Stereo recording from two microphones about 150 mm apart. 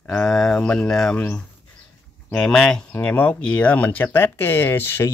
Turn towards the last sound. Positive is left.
turn(degrees=15)  # may be behind; listen again after turning